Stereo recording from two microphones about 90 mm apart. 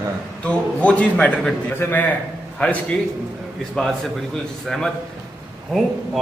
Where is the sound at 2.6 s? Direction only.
10° left (ahead or behind).